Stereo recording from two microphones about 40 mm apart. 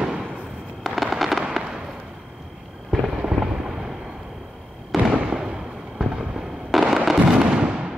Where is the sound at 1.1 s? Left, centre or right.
Centre.